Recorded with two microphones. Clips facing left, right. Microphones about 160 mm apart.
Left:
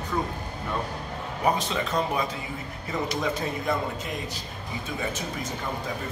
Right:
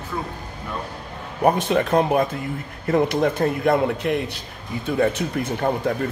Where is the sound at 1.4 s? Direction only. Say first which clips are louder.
Right 7 dB; 55° right (ahead or behind).